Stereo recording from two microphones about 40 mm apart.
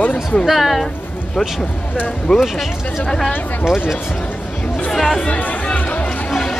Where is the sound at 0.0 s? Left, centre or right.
Left.